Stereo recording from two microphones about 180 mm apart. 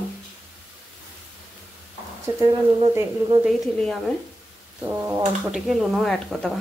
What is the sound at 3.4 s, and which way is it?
Speech, centre (ahead or behind).